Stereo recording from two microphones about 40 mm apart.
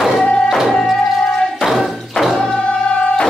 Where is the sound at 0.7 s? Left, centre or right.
Centre.